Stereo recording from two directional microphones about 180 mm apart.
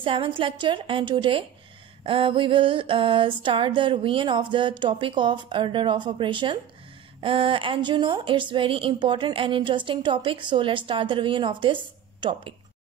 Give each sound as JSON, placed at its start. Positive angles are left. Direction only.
{"t": 0.0, "sound": "speech", "side_deg": -30}